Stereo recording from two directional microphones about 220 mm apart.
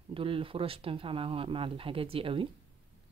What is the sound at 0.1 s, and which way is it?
Speech, 25° right (ahead or behind).